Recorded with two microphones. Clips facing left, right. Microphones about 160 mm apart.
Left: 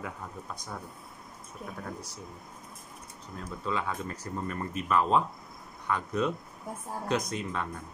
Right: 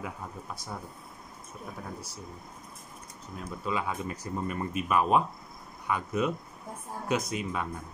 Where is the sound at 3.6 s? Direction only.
10° right (ahead or behind).